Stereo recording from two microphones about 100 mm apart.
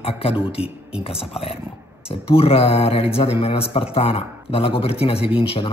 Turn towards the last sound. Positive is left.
turn(degrees=65)  # may be behind; listen again after turning